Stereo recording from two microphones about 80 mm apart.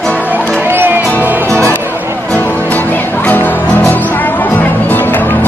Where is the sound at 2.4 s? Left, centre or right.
Left.